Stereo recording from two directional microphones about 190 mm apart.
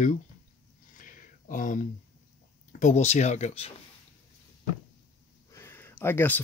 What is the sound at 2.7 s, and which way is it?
Speech, 40° left (ahead or behind).